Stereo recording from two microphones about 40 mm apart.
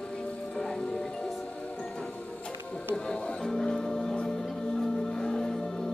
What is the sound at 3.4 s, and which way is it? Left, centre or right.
Music, left.